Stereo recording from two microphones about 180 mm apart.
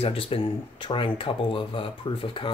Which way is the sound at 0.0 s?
30° left (ahead or behind).